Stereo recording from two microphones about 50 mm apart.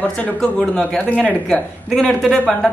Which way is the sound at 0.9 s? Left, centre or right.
Left.